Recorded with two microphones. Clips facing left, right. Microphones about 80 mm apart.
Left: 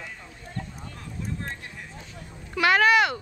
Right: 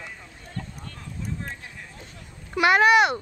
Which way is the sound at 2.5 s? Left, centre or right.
Centre.